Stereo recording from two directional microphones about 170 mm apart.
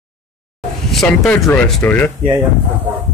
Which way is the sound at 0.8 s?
Centre (ahead or behind).